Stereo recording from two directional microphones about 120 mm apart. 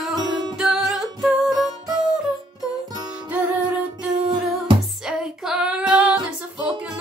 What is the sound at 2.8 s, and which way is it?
Music, 35° right (ahead or behind).